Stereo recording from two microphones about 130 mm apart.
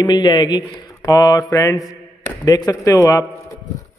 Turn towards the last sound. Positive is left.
turn(degrees=25)  # may be behind; listen again after turning